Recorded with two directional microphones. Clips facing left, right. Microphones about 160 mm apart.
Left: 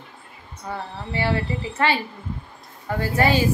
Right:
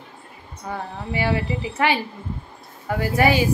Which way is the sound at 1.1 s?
15° right (ahead or behind).